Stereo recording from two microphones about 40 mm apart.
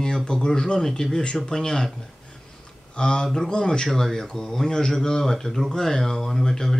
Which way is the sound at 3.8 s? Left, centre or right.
Centre.